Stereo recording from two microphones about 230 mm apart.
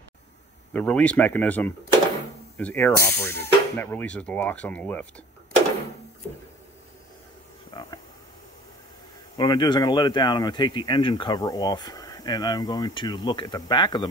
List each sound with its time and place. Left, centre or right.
0.7 s speech: centre
7.7 s a sound: centre
9.4 s speech: centre